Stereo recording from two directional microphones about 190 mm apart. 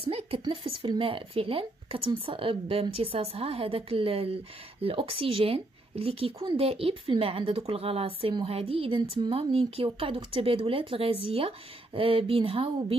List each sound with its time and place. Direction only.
0.0 s speech: 30° right (ahead or behind)